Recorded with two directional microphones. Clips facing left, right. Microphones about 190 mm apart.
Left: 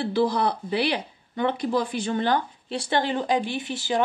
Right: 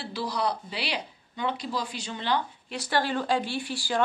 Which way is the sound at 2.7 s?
25° left (ahead or behind).